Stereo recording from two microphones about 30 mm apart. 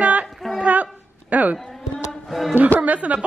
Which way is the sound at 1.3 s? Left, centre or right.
Right.